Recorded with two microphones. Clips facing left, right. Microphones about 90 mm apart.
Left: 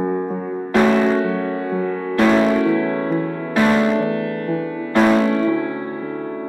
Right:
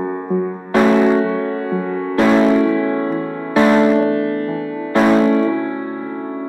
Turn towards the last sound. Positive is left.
turn(degrees=-5)  # may be behind; listen again after turning